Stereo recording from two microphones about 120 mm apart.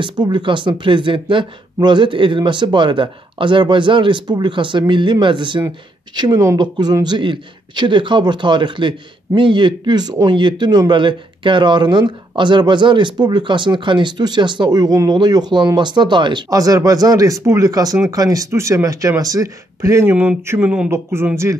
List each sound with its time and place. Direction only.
0.0 s speech: 40° right (ahead or behind); by 21.3 s 20° right (ahead or behind)